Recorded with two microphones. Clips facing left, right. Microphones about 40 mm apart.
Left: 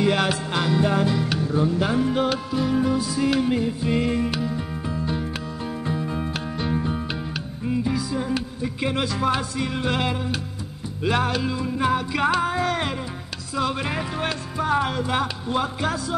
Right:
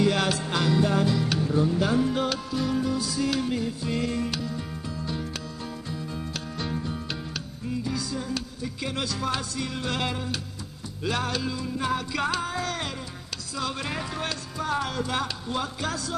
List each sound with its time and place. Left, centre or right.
0.0 s music: left